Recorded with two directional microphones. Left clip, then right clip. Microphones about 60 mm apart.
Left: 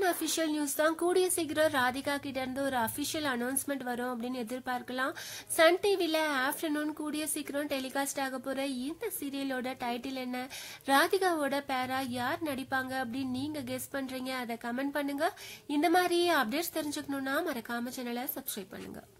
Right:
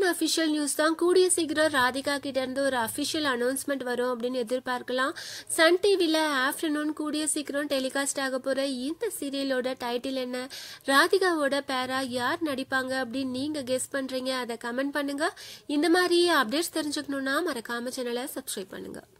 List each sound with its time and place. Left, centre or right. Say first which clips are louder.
0.0 s a woman's voice: right 5 dB; right
5.6 s a woman's voice: right 4 dB; right
6.7 s a woman's voice: right 4 dB; centre
7.1 s a woman's voice: right 6 dB; right
10.9 s a woman's voice: right 4 dB; right